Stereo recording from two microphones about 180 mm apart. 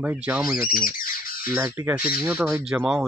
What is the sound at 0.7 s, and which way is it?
Squawk, 50° left (ahead or behind).